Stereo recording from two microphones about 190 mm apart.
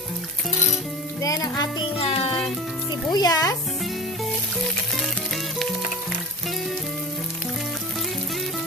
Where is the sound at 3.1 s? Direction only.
20° left (ahead or behind).